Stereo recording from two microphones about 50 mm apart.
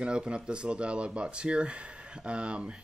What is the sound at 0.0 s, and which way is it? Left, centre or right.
Speech, centre.